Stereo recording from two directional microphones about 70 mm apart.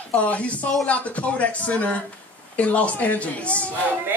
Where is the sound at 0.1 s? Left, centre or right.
Centre.